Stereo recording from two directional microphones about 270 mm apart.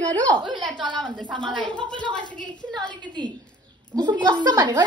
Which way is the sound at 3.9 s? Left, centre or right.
Centre.